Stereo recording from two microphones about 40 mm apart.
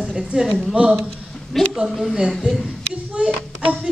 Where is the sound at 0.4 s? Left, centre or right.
Centre.